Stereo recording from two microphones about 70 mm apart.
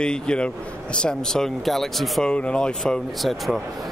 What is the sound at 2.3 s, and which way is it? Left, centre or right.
Speech, centre.